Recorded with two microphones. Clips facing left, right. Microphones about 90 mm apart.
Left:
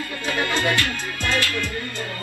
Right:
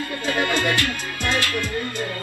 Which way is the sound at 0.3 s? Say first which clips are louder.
Right 1 dB; 20° right (ahead or behind).